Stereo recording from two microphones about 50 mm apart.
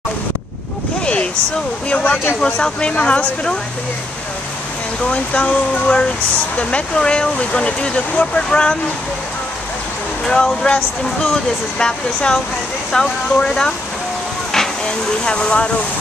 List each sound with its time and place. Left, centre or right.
1.0 s boat: left
1.9 s speech: left
5.0 s speech: left
10.3 s speech: centre
14.9 s speech: centre